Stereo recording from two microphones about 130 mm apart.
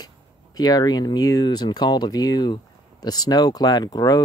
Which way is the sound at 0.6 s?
30° left (ahead or behind).